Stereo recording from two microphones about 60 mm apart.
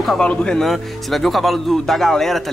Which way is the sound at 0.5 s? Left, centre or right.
Centre.